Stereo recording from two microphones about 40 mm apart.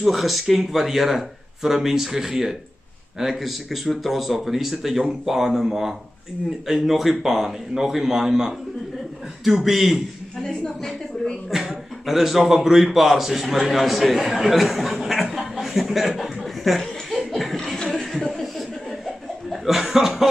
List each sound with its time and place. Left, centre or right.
0.0 s a man's voice: centre
10.4 s a woman's voice: centre
11.5 s a man's voice: centre
15.3 s chuckle: centre
17.6 s chuckle: centre
19.0 s chuckle: centre